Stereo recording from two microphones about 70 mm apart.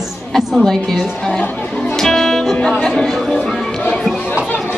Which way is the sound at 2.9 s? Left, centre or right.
Centre.